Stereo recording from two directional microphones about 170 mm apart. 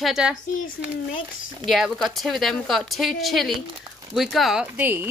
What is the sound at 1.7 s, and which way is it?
Speech, centre (ahead or behind).